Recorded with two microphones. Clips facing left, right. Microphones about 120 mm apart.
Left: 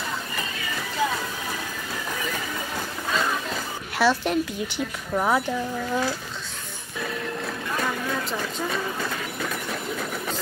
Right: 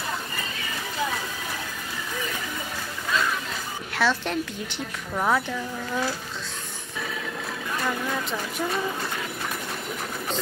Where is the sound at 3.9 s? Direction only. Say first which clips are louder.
Left 3 dB; 10° left (ahead or behind).